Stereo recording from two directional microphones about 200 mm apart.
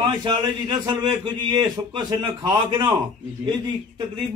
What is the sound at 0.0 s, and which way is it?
A man's voice, 20° right (ahead or behind).